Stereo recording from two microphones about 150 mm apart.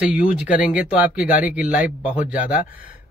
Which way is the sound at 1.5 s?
60° left (ahead or behind).